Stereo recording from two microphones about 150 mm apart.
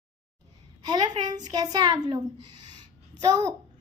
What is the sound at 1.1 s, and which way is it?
A woman's voice, 30° right (ahead or behind).